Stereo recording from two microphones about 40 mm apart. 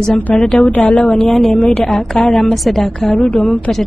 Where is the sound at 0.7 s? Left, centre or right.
Left.